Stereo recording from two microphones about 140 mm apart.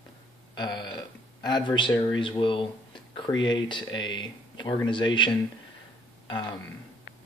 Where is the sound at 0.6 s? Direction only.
30° left (ahead or behind).